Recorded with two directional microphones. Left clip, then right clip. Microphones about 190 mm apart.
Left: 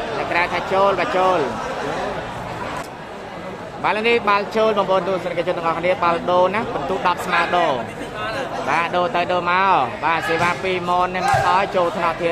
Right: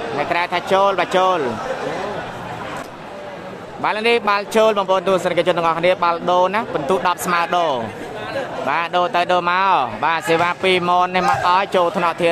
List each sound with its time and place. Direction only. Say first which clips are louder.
0.3 s speech: right 2 dB; 40° right (ahead or behind)
3.8 s speech: right 1 dB; 35° right (ahead or behind)